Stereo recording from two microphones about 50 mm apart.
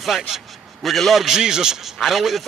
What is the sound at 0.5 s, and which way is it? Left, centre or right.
Speech, centre.